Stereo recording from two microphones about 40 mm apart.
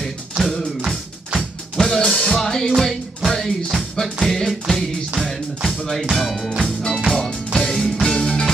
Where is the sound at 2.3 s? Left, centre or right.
Centre.